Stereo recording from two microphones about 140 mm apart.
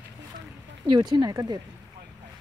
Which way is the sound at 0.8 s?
30° right (ahead or behind).